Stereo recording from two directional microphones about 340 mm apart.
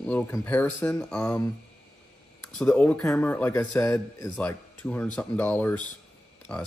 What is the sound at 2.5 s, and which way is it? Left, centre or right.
Speech, centre.